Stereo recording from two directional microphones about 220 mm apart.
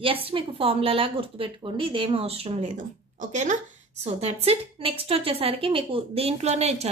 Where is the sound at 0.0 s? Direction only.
25° right (ahead or behind).